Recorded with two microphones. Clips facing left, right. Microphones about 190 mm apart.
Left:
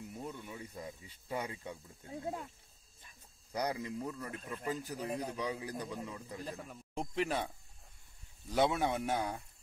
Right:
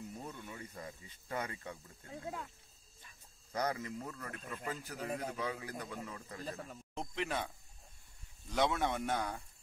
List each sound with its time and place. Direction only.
0.2 s speech: 10° left (ahead or behind)
3.5 s a man's voice: 15° left (ahead or behind)
6.4 s a man's voice: centre (ahead or behind)
7.2 s speech: 30° left (ahead or behind)
8.5 s a man's voice: 10° left (ahead or behind)